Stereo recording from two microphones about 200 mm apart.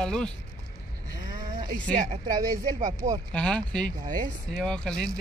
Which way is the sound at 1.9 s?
40° right (ahead or behind).